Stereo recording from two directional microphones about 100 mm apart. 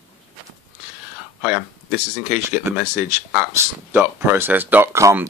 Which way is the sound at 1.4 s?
15° right (ahead or behind).